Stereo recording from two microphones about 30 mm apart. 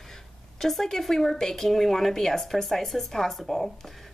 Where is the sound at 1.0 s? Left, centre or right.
Centre.